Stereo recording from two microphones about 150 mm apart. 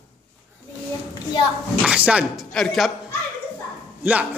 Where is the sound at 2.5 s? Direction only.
Centre (ahead or behind).